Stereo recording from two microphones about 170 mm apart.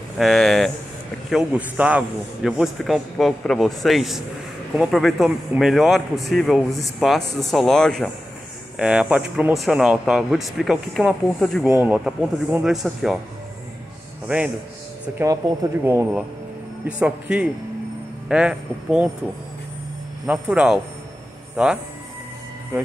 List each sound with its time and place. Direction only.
0.2 s a man's voice: centre (ahead or behind)
11.7 s a man's voice: 10° right (ahead or behind)
14.2 s a man's voice: 5° right (ahead or behind)
20.2 s a man's voice: 5° right (ahead or behind)